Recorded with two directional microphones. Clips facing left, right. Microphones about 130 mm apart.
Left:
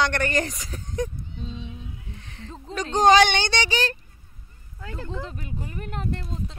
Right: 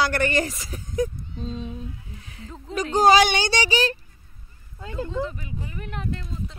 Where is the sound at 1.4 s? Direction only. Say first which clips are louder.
Right 6 dB; 45° right (ahead or behind).